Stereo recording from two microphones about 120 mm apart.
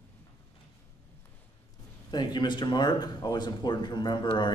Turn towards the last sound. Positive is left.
turn(degrees=40)  # may be behind; listen again after turning